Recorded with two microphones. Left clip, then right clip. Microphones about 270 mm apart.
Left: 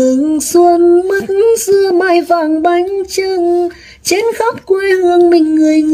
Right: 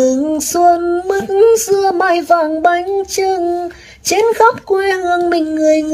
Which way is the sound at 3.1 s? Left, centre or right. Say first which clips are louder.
Left 2 dB; right.